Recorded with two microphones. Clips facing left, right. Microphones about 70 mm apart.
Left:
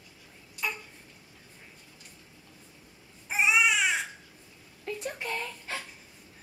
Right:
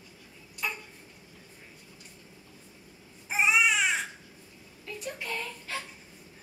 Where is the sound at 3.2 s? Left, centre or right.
Centre.